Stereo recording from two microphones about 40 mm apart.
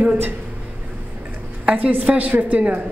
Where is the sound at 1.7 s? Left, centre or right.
Right.